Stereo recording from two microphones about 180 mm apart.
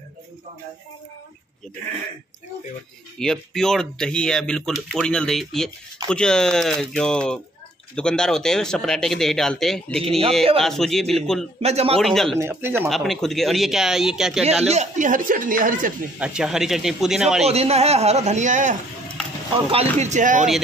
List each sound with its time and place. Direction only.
3.2 s speech: 5° left (ahead or behind)
11.6 s a man's voice: 35° right (ahead or behind)
12.0 s speech: centre (ahead or behind)
12.4 s speech: 15° right (ahead or behind)
12.8 s speech: centre (ahead or behind)
14.7 s speech: 40° right (ahead or behind)
16.2 s speech: 5° right (ahead or behind)
17.5 s a man's voice: 35° right (ahead or behind)